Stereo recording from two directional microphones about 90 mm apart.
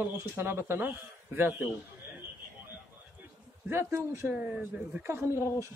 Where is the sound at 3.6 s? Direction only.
25° right (ahead or behind).